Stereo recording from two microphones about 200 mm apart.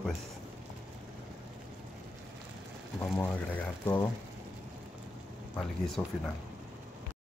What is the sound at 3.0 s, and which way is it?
Speech, 5° left (ahead or behind).